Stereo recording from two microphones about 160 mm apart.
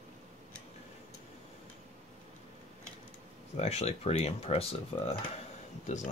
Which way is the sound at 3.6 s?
40° left (ahead or behind).